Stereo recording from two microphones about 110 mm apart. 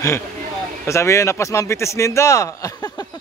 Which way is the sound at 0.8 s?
25° left (ahead or behind).